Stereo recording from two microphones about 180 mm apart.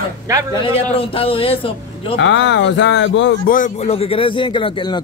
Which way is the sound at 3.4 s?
45° left (ahead or behind).